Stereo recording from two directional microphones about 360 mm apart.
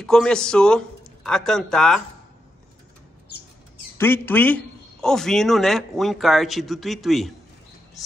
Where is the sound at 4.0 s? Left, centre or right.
Centre.